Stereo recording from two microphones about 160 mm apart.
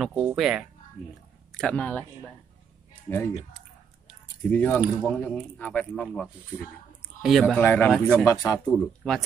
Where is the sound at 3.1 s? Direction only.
15° left (ahead or behind).